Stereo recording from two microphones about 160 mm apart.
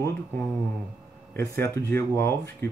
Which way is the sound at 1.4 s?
15° left (ahead or behind).